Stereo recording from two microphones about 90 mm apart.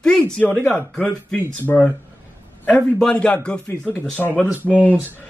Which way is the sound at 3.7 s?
25° left (ahead or behind).